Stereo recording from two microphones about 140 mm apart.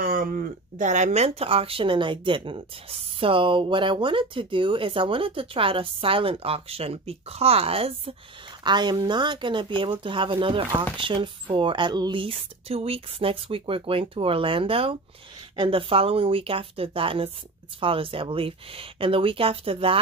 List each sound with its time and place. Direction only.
0.0 s speech: 80° right; by 8.1 s 45° right (ahead or behind)
8.6 s speech: 30° right (ahead or behind)